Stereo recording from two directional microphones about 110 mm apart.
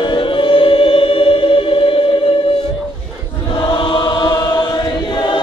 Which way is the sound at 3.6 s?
50° left (ahead or behind).